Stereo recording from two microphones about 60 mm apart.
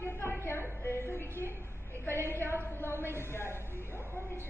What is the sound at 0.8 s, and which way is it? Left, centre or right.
Music, left.